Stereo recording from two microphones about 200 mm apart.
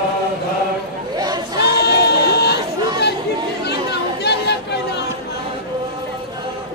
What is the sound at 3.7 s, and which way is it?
Chatter, 55° left (ahead or behind).